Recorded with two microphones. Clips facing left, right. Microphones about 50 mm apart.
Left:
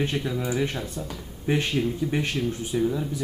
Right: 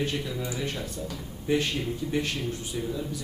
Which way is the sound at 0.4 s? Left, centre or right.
Centre.